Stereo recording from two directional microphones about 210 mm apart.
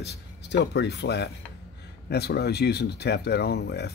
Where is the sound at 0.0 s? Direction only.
55° left (ahead or behind).